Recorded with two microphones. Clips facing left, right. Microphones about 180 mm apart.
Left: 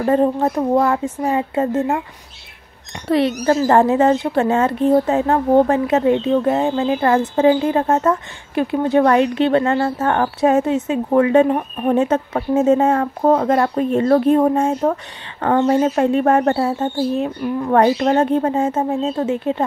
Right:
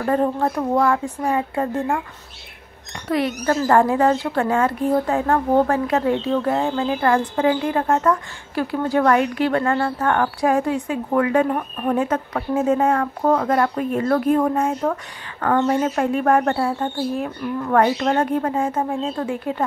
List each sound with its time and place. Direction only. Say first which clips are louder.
0.0 s speech: left 4 dB; 20° left (ahead or behind)
3.1 s speech: left 5 dB; 25° left (ahead or behind)